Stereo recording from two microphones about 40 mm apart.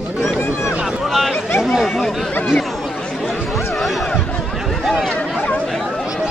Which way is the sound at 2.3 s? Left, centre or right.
Left.